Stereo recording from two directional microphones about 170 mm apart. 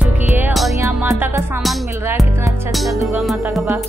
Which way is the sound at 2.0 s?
15° right (ahead or behind).